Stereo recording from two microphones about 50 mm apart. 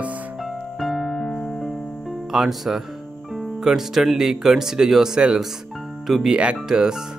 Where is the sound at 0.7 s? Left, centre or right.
Centre.